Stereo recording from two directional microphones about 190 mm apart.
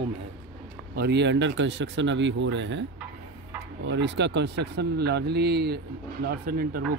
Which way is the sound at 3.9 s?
65° right (ahead or behind).